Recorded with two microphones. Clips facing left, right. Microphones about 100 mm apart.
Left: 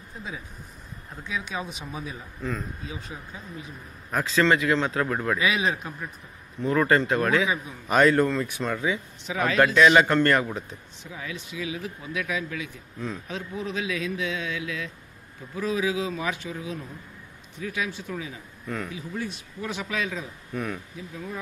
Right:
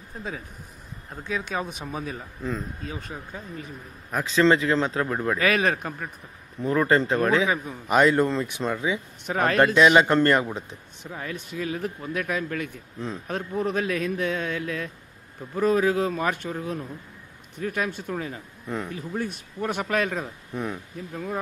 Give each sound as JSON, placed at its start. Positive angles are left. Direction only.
{"t": 1.2, "sound": "speech", "side_deg": -50}
{"t": 4.1, "sound": "speech", "side_deg": -20}
{"t": 5.4, "sound": "speech", "side_deg": -55}
{"t": 6.6, "sound": "speech", "side_deg": -30}
{"t": 7.4, "sound": "speech", "side_deg": -45}
{"t": 7.9, "sound": "speech", "side_deg": -20}
{"t": 9.2, "sound": "speech", "side_deg": -50}
{"t": 9.8, "sound": "speech", "side_deg": -20}
{"t": 11.1, "sound": "speech", "side_deg": -45}
{"t": 20.5, "sound": "speech", "side_deg": -20}
{"t": 21.1, "sound": "speech", "side_deg": -55}